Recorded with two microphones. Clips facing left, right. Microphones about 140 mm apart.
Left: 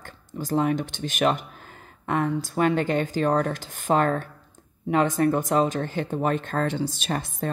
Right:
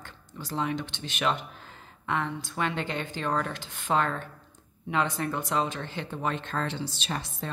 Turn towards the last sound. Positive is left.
turn(degrees=50)  # may be behind; listen again after turning